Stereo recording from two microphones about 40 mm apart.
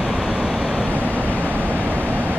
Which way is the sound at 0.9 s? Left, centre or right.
Right.